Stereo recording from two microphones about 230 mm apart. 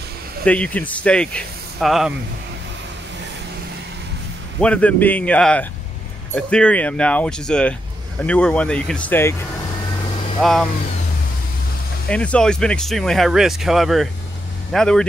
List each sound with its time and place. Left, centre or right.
0.5 s speech: centre
4.6 s speech: centre
10.4 s speech: centre
12.1 s speech: centre